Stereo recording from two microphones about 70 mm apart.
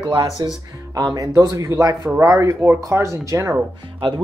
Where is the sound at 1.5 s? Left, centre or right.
Right.